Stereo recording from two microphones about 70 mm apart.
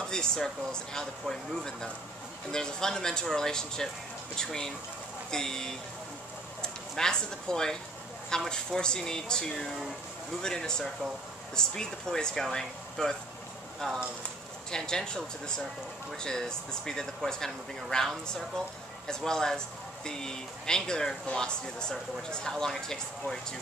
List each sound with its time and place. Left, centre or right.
0.0 s speech: centre